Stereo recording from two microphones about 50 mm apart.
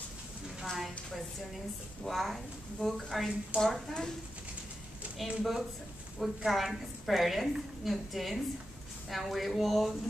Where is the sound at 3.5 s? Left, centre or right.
Right.